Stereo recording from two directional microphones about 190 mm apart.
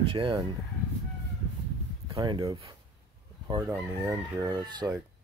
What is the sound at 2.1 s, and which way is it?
Chicken, 25° right (ahead or behind).